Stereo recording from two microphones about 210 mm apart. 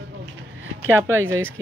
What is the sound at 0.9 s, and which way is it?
Speech, 10° right (ahead or behind).